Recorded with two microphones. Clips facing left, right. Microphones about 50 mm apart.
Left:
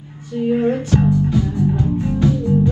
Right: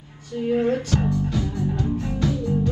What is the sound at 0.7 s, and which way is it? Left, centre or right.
Music, left.